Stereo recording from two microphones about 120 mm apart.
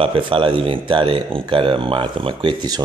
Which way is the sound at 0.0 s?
45° right (ahead or behind).